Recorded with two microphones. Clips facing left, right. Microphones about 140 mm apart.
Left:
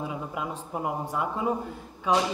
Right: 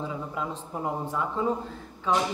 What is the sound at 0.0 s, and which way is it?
A woman's voice, 15° left (ahead or behind).